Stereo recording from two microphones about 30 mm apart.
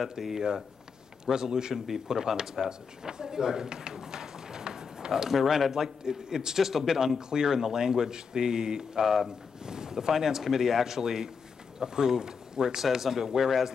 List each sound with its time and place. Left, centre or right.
0.3 s speech: right
3.9 s a sound: centre
5.3 s speech: centre
5.7 s a man's voice: centre
9.0 s a man's voice: centre
9.7 s a man's voice: right